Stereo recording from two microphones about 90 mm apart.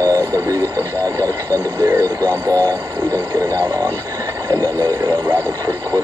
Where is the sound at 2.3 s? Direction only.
20° left (ahead or behind).